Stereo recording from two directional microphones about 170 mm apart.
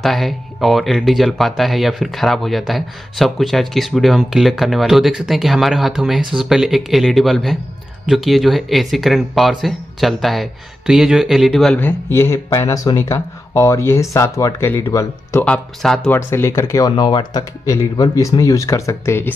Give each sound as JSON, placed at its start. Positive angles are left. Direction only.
{"t": 0.0, "sound": "speech", "side_deg": 0}
{"t": 12.1, "sound": "speech", "side_deg": 15}
{"t": 15.4, "sound": "speech", "side_deg": 5}